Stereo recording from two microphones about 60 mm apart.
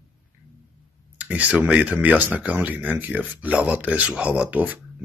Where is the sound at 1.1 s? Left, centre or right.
Right.